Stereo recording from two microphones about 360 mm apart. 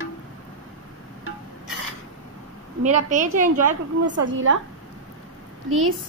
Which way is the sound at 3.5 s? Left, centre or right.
Right.